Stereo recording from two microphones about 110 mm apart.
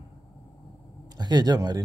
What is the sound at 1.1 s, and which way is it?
Speech, 40° right (ahead or behind).